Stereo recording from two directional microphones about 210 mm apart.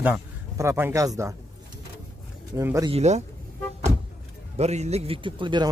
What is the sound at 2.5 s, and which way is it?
Speech, 15° right (ahead or behind).